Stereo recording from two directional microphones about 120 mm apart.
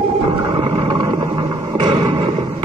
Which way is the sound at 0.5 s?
50° right (ahead or behind).